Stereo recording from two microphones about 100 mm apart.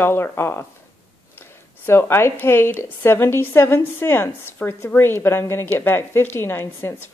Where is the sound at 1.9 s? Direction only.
25° left (ahead or behind).